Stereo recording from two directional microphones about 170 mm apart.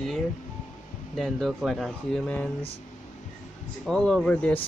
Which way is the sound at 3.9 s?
5° left (ahead or behind).